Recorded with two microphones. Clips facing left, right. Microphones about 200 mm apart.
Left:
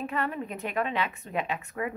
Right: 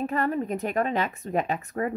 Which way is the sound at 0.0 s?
40° right (ahead or behind).